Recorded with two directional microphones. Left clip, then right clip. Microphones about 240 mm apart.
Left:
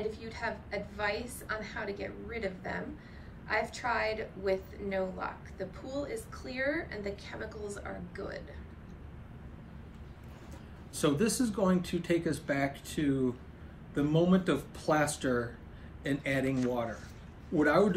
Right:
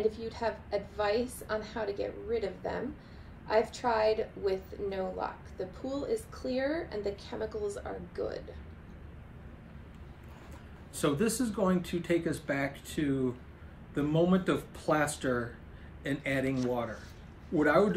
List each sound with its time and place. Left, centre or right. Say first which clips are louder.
0.0 s a woman's voice: right 5 dB; centre
11.0 s speech: even; centre